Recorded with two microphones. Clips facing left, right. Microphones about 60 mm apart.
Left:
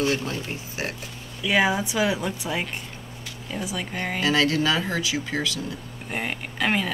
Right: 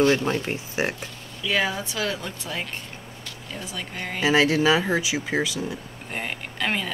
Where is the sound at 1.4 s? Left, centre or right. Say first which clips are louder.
Left 3 dB; centre.